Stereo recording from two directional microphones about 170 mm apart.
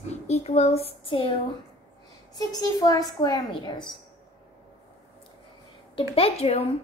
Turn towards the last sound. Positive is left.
turn(degrees=35)  # may be behind; listen again after turning